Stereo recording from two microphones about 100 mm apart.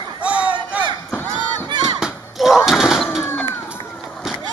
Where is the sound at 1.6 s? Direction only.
50° right (ahead or behind).